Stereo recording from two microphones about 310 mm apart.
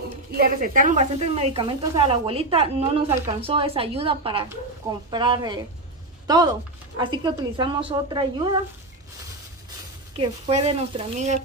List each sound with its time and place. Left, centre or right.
0.4 s a woman's voice: right
10.1 s speech: centre